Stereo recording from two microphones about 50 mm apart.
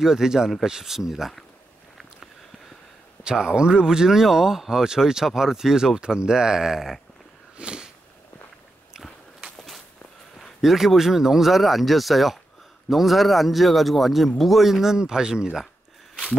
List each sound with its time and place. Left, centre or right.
0.0 s speech: centre
3.3 s speech: centre
7.5 s a sound: centre
10.6 s speech: centre